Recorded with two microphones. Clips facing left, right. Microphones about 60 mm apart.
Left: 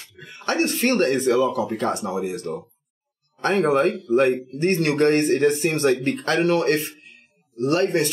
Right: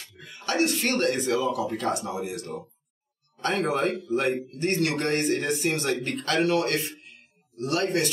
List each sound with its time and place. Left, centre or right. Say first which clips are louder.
0.0 s speech: left 5 dB; left